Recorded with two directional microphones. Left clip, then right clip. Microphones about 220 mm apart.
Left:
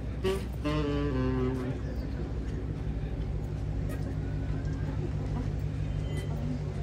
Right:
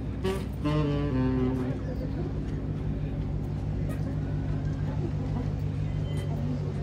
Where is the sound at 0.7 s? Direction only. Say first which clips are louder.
Right 2 dB; 45° right (ahead or behind).